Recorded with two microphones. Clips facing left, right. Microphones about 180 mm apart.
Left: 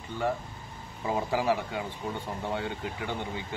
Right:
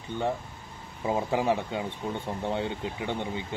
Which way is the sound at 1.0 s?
20° right (ahead or behind).